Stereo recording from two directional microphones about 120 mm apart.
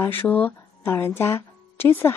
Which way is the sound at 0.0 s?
15° left (ahead or behind).